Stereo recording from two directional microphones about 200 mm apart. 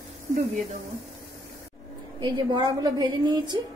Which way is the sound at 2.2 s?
20° right (ahead or behind).